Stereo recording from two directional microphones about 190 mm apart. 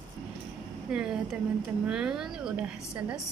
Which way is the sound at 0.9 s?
5° right (ahead or behind).